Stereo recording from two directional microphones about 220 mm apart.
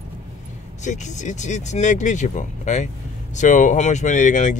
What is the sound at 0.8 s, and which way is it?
Speech, 35° left (ahead or behind).